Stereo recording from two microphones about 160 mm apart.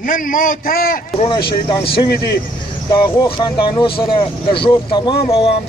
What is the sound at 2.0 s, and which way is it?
Speech, 80° left.